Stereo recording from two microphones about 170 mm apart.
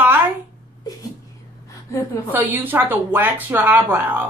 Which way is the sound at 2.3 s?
10° right (ahead or behind).